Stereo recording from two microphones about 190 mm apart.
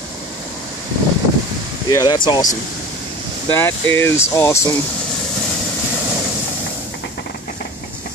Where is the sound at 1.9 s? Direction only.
20° left (ahead or behind).